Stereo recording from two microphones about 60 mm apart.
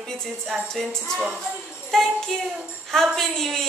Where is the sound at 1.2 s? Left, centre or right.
Centre.